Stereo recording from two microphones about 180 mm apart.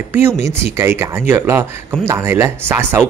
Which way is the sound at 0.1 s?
15° right (ahead or behind).